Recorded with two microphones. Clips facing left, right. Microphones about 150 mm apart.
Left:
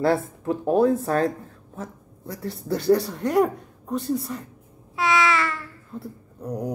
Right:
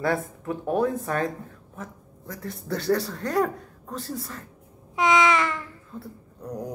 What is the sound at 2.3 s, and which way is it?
Speech, 30° left (ahead or behind).